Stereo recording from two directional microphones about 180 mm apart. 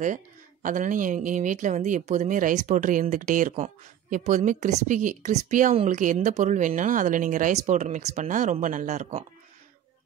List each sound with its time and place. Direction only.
0.0 s speech: 45° right (ahead or behind)